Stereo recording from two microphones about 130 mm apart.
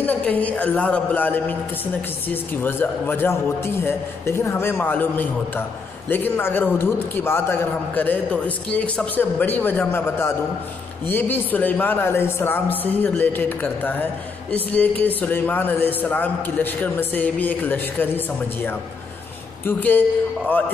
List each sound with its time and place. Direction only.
0.0 s a man's voice: 10° left (ahead or behind)